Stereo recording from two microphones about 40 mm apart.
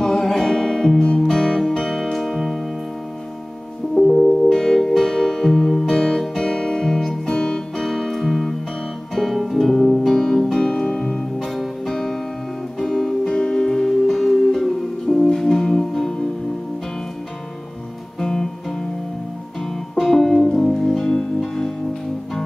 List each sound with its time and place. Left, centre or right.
0.0 s music: centre
2.1 s music: centre
3.9 s music: centre
10.9 s music: centre
11.3 s music: centre
18.2 s music: centre
19.6 s music: centre